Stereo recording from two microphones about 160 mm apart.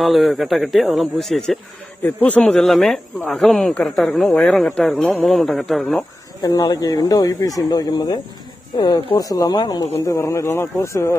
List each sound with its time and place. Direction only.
0.0 s speech: centre (ahead or behind)
6.4 s speech: 25° left (ahead or behind)